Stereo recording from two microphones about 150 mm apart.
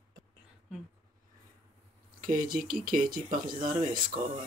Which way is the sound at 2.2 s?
70° right (ahead or behind).